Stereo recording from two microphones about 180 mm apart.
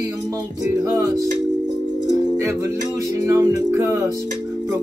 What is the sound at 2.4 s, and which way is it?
Music, 15° right (ahead or behind).